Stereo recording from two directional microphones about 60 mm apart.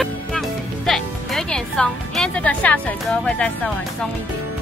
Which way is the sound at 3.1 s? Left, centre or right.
Centre.